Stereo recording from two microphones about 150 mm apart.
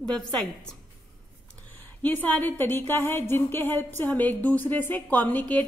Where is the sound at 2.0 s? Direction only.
10° left (ahead or behind).